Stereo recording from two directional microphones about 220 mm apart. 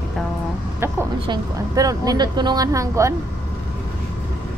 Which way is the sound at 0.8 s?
15° right (ahead or behind).